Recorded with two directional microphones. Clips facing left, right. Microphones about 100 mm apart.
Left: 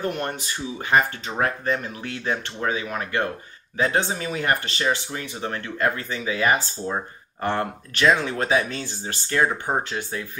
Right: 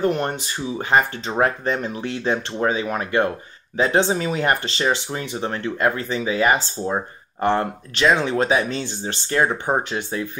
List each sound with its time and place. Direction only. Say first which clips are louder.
0.0 s speech: right 6 dB; 30° right (ahead or behind)